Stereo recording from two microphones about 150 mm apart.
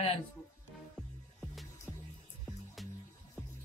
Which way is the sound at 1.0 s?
Centre (ahead or behind).